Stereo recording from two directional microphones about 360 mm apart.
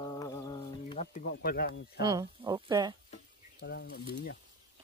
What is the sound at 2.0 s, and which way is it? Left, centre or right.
Speech, centre.